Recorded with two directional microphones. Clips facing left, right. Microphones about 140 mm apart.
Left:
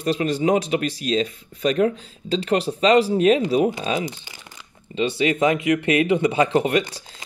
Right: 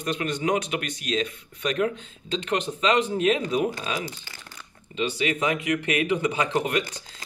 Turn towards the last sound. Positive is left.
turn(degrees=30)  # may be behind; listen again after turning